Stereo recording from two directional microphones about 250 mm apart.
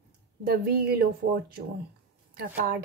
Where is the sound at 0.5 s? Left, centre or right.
Right.